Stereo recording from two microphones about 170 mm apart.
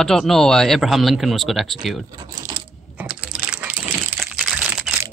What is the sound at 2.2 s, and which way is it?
Mechanisms, 25° right (ahead or behind).